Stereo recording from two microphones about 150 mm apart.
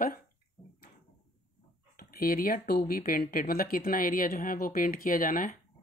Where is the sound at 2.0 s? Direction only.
80° left.